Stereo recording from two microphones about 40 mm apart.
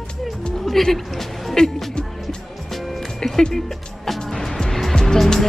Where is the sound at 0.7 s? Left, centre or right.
Centre.